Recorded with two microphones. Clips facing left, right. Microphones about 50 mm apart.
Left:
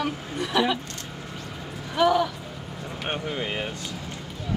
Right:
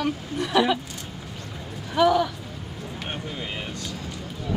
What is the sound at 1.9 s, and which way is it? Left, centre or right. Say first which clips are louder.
Speech: right 1 dB; centre.